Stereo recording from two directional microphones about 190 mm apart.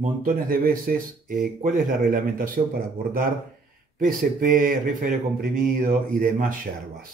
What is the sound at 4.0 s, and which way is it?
Speech, 45° right (ahead or behind).